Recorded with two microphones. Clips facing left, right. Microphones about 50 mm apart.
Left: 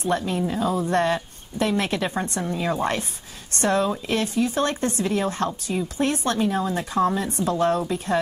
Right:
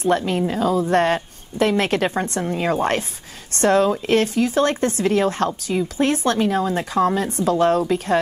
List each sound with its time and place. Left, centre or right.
0.0 s a woman's voice: right